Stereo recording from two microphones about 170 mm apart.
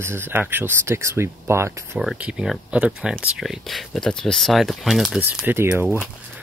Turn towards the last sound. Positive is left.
turn(degrees=-10)  # may be behind; listen again after turning